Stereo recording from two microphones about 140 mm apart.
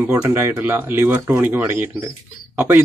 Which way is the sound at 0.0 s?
15° right (ahead or behind).